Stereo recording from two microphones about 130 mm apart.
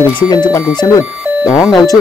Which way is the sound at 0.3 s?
30° left (ahead or behind).